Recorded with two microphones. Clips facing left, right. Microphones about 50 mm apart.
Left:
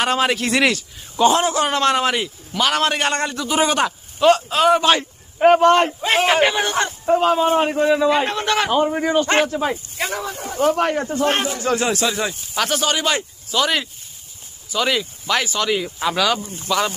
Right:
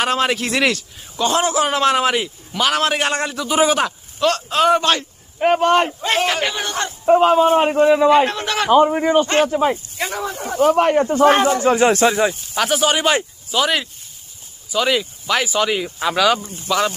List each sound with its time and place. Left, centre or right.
0.0 s a man's voice: centre
4.9 s a sound: centre
5.6 s a man's voice: centre
5.9 s speech: centre
7.2 s a man's voice: centre
8.1 s a man's voice: centre
10.9 s speech: right
11.9 s speech: right
12.4 s a man's voice: centre
13.6 s a man's voice: centre